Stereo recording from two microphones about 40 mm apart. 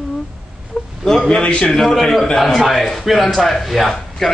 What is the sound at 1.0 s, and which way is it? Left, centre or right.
A man's voice, centre.